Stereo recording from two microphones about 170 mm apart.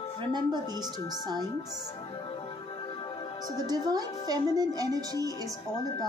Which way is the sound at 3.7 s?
20° right (ahead or behind).